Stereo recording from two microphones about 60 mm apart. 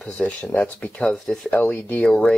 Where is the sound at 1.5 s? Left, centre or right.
Left.